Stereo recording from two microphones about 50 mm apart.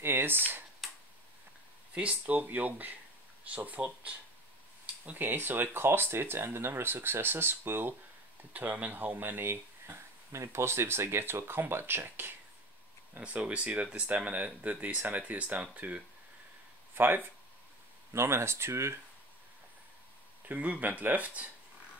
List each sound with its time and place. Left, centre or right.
0.0 s speech: right
0.8 s tick-tock: centre
2.0 s speech: right
5.1 s speech: right
8.5 s speech: right
10.3 s speech: right
13.2 s speech: right
16.9 s speech: right
18.1 s speech: right
20.4 s speech: right